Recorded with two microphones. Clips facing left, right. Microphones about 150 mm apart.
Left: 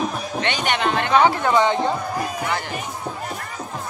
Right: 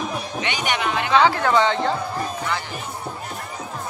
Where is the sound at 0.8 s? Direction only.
50° left (ahead or behind).